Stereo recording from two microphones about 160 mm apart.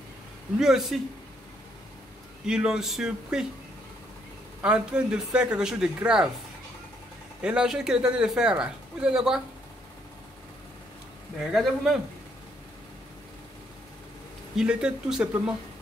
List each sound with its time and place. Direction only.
0.6 s speech: centre (ahead or behind)
2.4 s speech: 5° right (ahead or behind)
4.6 s speech: 5° right (ahead or behind)
7.4 s speech: 5° right (ahead or behind)
11.5 s speech: centre (ahead or behind)
14.6 s speech: 5° right (ahead or behind)